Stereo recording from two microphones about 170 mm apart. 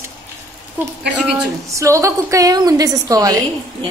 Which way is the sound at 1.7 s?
20° right (ahead or behind).